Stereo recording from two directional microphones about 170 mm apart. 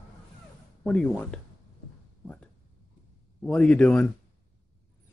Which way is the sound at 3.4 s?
5° left (ahead or behind).